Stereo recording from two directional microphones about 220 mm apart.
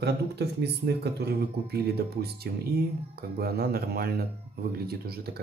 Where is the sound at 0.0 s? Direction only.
50° right (ahead or behind).